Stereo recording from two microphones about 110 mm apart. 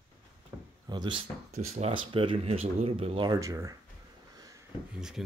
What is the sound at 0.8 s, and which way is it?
Speech, 45° right (ahead or behind).